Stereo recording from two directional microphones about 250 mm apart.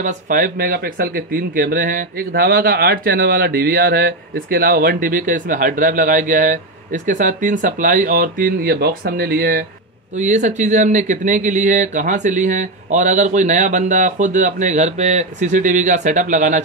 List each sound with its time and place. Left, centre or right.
0.0 s speech: right